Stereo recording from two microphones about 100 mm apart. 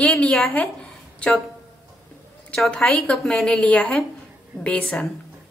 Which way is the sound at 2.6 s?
5° left (ahead or behind).